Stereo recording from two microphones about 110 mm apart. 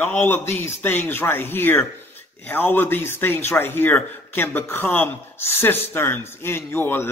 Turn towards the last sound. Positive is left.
turn(degrees=20)  # may be behind; listen again after turning